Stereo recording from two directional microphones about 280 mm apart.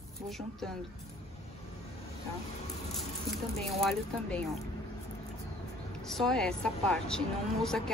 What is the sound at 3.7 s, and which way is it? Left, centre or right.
Speech, centre.